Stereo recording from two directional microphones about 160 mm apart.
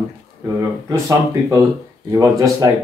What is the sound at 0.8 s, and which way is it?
A man's voice, 20° right (ahead or behind).